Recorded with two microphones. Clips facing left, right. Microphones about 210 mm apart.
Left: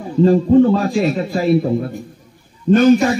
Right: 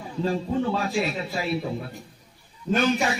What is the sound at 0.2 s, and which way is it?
A man's voice, 45° left (ahead or behind).